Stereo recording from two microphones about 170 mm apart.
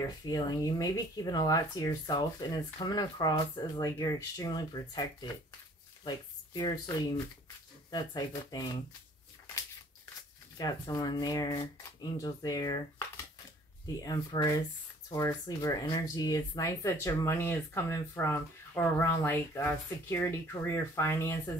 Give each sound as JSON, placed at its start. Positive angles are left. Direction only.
{"t": 0.2, "sound": "speech", "side_deg": 20}
{"t": 10.6, "sound": "speech", "side_deg": 20}
{"t": 14.0, "sound": "speech", "side_deg": 20}